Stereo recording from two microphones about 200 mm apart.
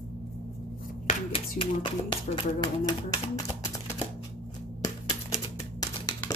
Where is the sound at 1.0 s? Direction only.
25° left (ahead or behind).